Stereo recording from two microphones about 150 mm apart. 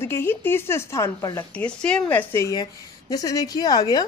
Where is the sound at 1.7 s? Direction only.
5° left (ahead or behind); by 4.0 s 25° left (ahead or behind).